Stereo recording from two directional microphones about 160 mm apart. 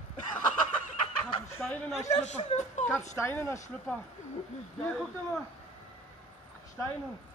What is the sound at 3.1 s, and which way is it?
Speech, 15° left (ahead or behind).